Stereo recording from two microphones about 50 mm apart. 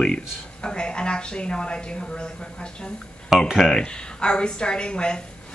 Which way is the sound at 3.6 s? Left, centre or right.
Centre.